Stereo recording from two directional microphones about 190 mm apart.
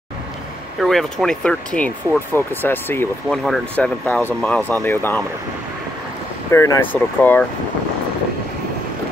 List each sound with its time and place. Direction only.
0.7 s speech: centre (ahead or behind)
6.5 s speech: 15° left (ahead or behind)